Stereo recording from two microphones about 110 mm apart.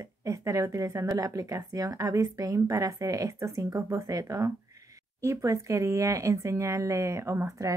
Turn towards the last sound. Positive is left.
turn(degrees=-25)  # may be behind; listen again after turning